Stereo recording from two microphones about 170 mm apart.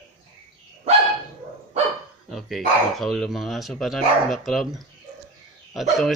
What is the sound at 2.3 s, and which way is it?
Speech, centre (ahead or behind).